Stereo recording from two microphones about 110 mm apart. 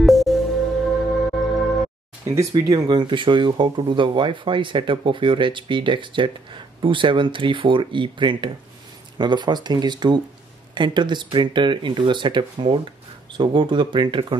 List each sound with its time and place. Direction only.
0.0 s music: centre (ahead or behind)
2.2 s speech: 30° right (ahead or behind)
2.9 s speech: 45° right (ahead or behind)